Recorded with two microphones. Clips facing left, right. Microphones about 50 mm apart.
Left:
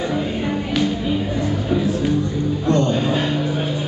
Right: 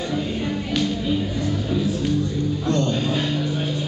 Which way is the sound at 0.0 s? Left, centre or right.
Centre.